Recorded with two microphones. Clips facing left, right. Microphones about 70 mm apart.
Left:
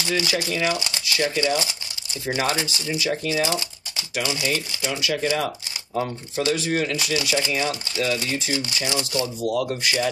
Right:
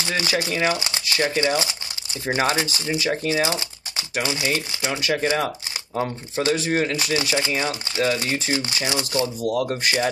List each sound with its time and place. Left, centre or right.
0.1 s speech: right
4.6 s speech: right
8.8 s speech: right
9.5 s speech: right